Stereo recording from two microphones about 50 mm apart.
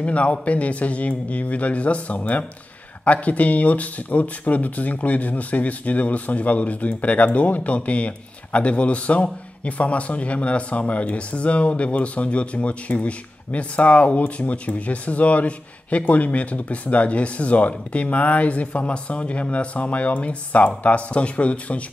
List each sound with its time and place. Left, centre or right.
0.0 s speech: left